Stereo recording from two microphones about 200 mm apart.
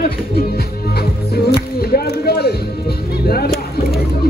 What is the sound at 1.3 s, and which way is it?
Speech, 50° left (ahead or behind).